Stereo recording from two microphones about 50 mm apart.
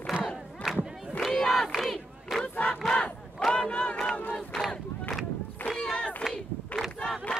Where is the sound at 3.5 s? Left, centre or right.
Left.